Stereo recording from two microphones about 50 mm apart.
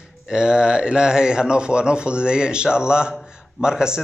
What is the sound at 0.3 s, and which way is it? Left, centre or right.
Speech, centre.